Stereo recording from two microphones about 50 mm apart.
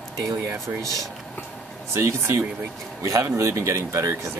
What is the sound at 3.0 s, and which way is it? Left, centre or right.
Speech, right.